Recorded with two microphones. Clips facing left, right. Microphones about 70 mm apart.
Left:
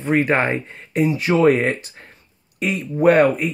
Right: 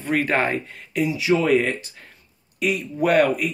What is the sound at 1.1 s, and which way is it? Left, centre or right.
Speech, left.